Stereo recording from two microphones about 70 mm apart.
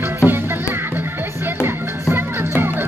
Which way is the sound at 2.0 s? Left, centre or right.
Right.